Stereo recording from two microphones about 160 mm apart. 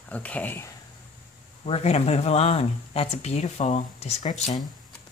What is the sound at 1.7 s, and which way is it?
Speech, 40° left (ahead or behind).